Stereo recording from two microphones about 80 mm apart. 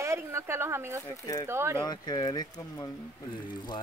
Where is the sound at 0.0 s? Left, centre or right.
Right.